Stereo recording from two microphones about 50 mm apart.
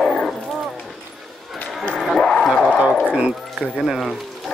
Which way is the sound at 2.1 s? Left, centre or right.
Centre.